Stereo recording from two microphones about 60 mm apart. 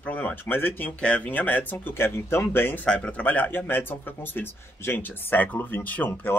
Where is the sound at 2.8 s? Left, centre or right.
Centre.